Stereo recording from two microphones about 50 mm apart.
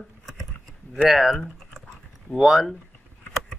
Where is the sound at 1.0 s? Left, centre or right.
Centre.